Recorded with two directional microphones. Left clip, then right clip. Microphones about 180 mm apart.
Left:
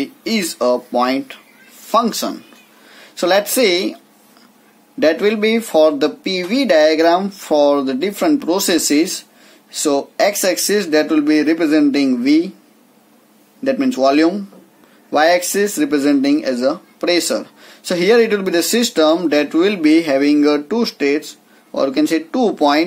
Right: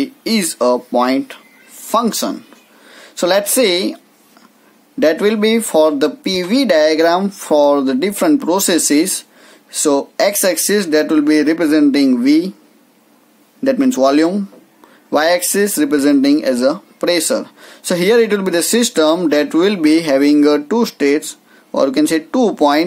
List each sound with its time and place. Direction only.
0.0 s speech: 20° right (ahead or behind)
2.5 s cat: 20° right (ahead or behind)
4.9 s speech: 20° right (ahead or behind)
10.1 s speech: 25° right (ahead or behind)
14.0 s speech: 25° right (ahead or behind)